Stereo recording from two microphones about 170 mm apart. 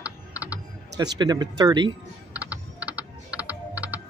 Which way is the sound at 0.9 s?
25° right (ahead or behind).